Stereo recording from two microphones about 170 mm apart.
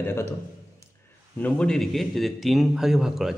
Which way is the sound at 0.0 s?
15° left (ahead or behind).